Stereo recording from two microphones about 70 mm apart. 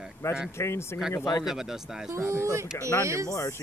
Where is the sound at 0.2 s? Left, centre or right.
Left.